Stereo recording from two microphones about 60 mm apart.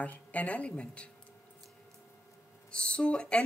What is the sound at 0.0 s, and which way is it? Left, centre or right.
A woman's voice, left.